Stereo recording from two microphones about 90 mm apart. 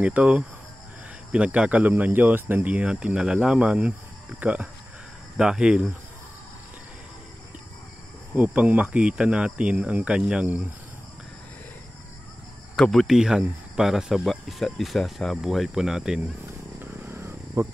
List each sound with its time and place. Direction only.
0.0 s speech: 15° right (ahead or behind)
8.4 s speech: 15° right (ahead or behind)
12.7 s speech: 10° left (ahead or behind)
13.0 s speech: 5° right (ahead or behind)
16.8 s a sound: 25° right (ahead or behind)